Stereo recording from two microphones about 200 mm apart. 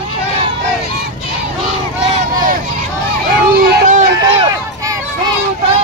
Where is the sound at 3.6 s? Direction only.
40° right (ahead or behind).